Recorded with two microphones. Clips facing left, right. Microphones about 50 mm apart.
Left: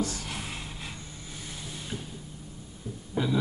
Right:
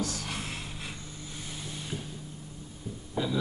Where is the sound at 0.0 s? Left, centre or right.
Centre.